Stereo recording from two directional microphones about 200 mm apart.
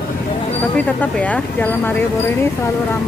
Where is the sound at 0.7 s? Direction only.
5° left (ahead or behind).